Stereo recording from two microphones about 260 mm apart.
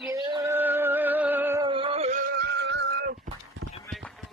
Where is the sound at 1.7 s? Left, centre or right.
Right.